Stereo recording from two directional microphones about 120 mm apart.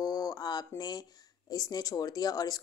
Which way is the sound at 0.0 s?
30° left (ahead or behind).